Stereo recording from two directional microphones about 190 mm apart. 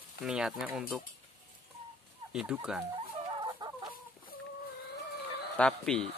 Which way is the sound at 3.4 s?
20° right (ahead or behind).